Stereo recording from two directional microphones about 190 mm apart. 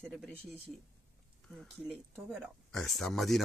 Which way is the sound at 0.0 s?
Centre (ahead or behind).